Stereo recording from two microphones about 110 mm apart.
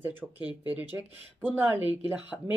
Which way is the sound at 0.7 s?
15° right (ahead or behind).